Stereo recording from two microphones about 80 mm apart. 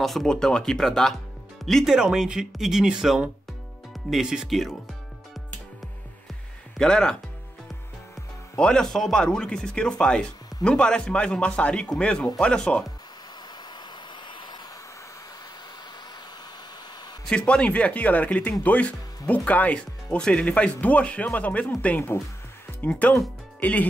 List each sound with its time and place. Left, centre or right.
0.0 s speech: centre
1.9 s speech: centre
6.8 s speech: centre
8.5 s speech: centre
13.7 s vehicle: left
17.3 s speech: centre
22.8 s speech: centre